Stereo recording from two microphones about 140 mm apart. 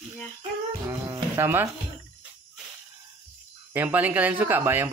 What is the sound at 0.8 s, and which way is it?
Insect, 20° right (ahead or behind).